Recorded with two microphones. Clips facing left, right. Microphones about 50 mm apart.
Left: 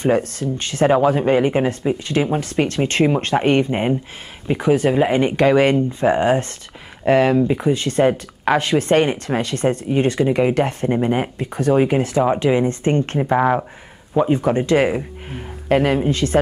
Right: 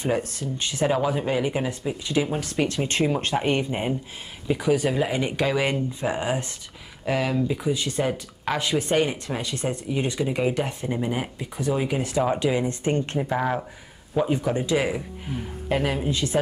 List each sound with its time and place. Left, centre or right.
0.0 s speech: left
0.9 s speech: left
13.2 s speech: left
14.2 s speech: left
14.9 s speech: left